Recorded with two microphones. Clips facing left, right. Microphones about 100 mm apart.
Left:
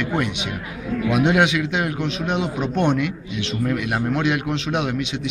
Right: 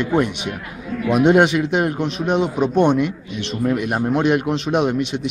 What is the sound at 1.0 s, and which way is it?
Speech, 40° right (ahead or behind).